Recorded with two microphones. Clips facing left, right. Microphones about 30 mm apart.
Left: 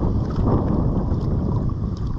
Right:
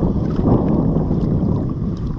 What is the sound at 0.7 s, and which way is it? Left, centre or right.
Boat, right.